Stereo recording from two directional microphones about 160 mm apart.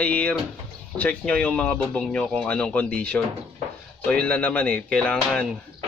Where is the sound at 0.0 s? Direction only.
10° left (ahead or behind).